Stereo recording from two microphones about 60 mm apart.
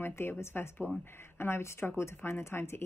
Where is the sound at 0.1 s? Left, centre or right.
Left.